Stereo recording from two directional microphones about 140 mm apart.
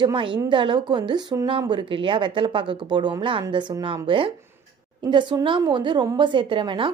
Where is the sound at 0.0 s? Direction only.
35° right (ahead or behind).